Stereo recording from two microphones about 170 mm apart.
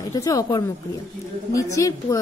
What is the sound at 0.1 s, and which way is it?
A woman's voice, 20° left (ahead or behind).